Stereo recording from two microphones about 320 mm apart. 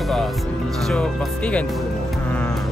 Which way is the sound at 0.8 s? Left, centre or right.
Centre.